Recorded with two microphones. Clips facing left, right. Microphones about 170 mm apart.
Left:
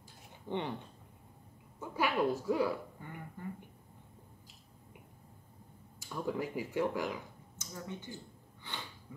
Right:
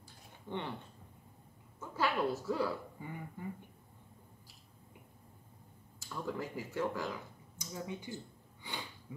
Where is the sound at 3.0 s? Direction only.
10° right (ahead or behind).